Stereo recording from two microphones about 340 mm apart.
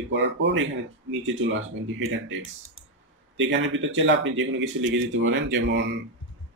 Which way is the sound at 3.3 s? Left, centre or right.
Right.